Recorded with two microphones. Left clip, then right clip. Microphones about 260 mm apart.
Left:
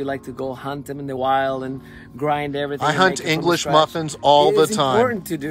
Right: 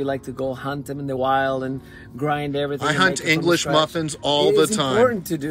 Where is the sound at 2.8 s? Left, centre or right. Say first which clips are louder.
Left 2 dB; left.